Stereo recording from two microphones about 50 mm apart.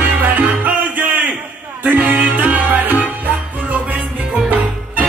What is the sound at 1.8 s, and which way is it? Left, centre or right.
Music, right.